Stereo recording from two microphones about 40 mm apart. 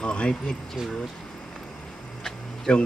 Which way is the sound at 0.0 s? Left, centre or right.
Left.